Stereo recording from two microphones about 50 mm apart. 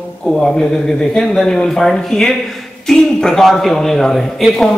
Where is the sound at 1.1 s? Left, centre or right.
Centre.